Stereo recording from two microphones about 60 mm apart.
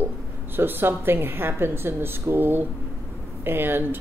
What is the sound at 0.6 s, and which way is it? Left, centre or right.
Speech, right.